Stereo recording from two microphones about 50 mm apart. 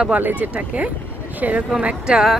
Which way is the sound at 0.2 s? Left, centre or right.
Right.